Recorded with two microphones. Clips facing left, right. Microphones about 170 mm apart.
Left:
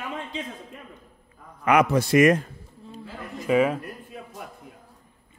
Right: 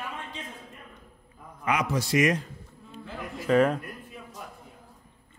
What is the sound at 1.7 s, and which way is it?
Speech, 60° left (ahead or behind).